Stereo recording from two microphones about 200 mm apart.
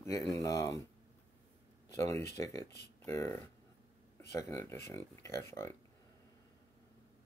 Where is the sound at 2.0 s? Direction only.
15° left (ahead or behind).